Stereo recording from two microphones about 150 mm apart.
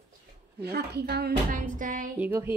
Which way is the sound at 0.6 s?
90° right.